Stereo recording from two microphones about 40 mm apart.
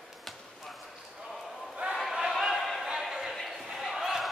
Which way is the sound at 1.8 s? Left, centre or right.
Right.